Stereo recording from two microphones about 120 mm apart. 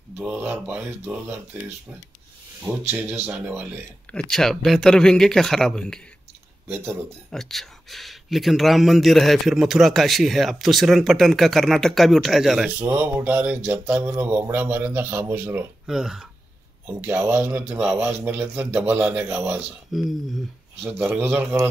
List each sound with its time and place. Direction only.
0.2 s mantra: 15° right (ahead or behind)
4.1 s a man's voice: 5° left (ahead or behind)
7.2 s a man's voice: 5° left (ahead or behind)
12.8 s mantra: 15° right (ahead or behind)
15.9 s a man's voice: 5° right (ahead or behind)
16.8 s mantra: 15° right (ahead or behind)
18.0 s mantra: 15° right (ahead or behind)
19.9 s a man's voice: centre (ahead or behind)
21.0 s mantra: 15° right (ahead or behind)